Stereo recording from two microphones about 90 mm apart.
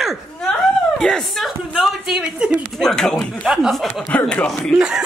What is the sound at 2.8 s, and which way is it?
Speech, 5° left (ahead or behind).